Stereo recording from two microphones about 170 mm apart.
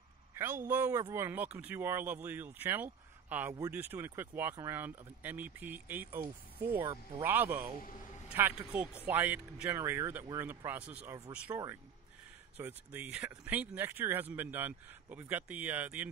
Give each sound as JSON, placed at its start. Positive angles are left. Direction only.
{"t": 0.7, "sound": "speech", "side_deg": -10}
{"t": 6.8, "sound": "speech", "side_deg": -25}
{"t": 7.2, "sound": "speech", "side_deg": -10}